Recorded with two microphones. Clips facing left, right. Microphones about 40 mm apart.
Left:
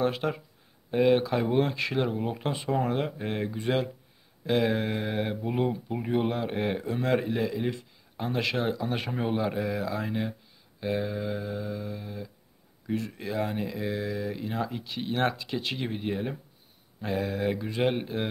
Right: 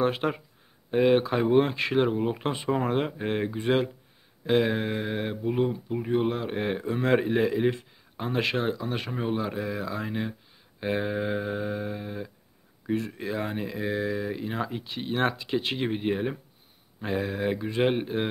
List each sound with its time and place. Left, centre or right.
0.0 s speech: centre
8.2 s speech: centre
8.5 s speech: centre
10.8 s speech: right
12.8 s speech: centre